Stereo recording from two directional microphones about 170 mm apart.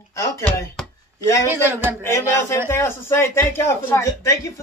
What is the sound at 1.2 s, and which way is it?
Speech, 15° left (ahead or behind).